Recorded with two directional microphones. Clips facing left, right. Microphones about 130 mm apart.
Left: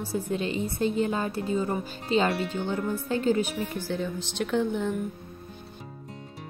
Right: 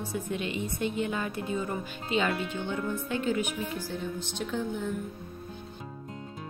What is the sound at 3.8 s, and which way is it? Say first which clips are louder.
Speech: left 4 dB; 85° left.